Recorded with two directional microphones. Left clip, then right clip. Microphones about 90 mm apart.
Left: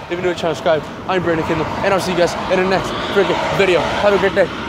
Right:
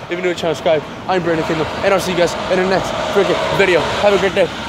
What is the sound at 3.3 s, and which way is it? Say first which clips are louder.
Speech: right 1 dB; 80° right.